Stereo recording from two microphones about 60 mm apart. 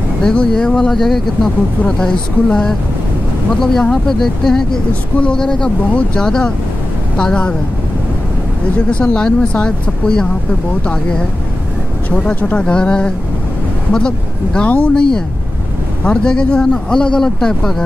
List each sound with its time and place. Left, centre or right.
0.2 s speech: centre
1.9 s speech: centre
8.9 s speech: centre
12.1 s speech: left